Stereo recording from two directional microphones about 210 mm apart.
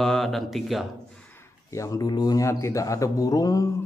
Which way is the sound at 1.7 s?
15° left (ahead or behind).